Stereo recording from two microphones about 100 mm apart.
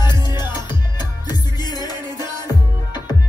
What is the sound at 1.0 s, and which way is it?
Music, 45° left (ahead or behind).